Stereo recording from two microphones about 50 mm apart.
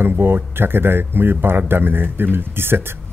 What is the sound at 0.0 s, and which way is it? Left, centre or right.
Speech, right.